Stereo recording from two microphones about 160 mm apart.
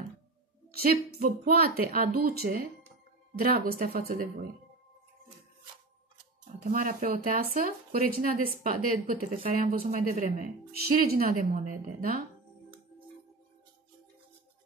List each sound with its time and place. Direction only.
0.7 s a woman's voice: 60° right (ahead or behind)
6.7 s a woman's voice: 60° right (ahead or behind)
10.9 s a woman's voice: 65° right (ahead or behind)